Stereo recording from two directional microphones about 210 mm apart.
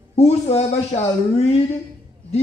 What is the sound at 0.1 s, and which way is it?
A man's voice, 30° left (ahead or behind).